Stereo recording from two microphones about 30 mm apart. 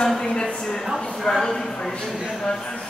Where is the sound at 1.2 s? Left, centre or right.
Centre.